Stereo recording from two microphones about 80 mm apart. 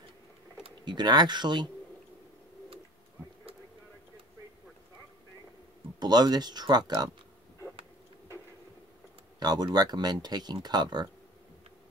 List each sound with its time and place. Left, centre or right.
0.8 s speech: right
5.9 s speech: right
9.4 s speech: right